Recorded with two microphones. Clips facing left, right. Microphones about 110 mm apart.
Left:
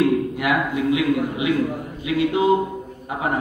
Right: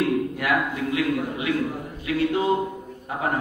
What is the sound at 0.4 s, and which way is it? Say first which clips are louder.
A man's voice: left 3 dB; 15° left (ahead or behind).